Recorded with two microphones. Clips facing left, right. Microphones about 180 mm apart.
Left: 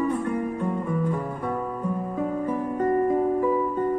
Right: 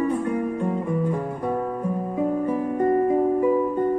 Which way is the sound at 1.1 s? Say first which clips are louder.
Right 3 dB; 35° right (ahead or behind).